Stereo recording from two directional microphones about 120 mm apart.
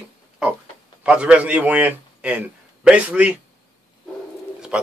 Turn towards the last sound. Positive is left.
turn(degrees=-10)  # may be behind; listen again after turning